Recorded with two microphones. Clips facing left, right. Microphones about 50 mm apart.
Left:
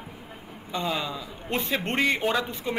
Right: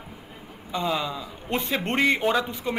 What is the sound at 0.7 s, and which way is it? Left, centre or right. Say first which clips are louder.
Speech: right 2 dB; centre.